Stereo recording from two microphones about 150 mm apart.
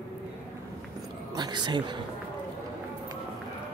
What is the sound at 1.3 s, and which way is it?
Speech, 30° right (ahead or behind).